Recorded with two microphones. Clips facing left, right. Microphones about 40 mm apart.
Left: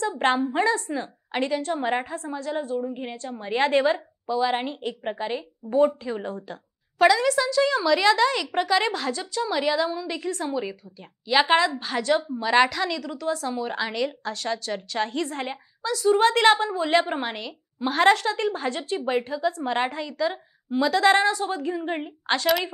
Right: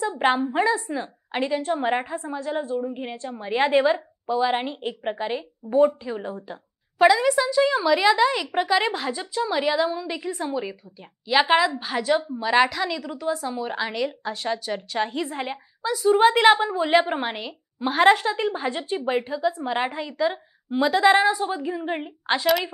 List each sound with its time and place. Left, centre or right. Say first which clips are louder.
0.2 s a woman's voice: right 1 dB; centre
0.7 s a woman's voice: even; centre
1.3 s a woman's voice: right 1 dB; centre; by 2.7 s right
2.7 s a woman's voice: right 1 dB; centre
5.8 s speech: right 2 dB; centre
6.3 s a woman's voice: even; centre